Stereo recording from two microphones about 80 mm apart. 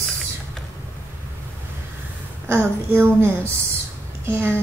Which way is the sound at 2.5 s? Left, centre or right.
Right.